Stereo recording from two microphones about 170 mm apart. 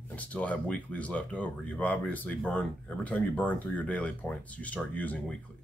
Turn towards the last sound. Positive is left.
turn(degrees=10)  # may be behind; listen again after turning